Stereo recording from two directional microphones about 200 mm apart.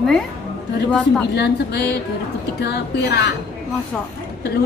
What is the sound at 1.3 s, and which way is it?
A woman's voice, 55° left (ahead or behind).